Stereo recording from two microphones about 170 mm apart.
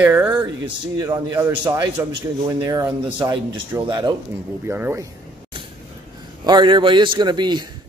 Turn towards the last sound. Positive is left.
turn(degrees=-25)  # may be behind; listen again after turning